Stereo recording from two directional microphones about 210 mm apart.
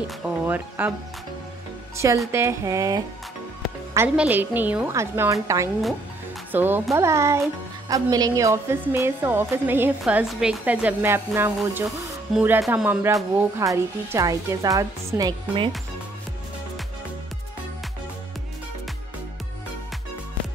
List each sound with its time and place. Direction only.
0.2 s a woman's voice: 10° right (ahead or behind)
2.3 s a woman's voice: 15° right (ahead or behind)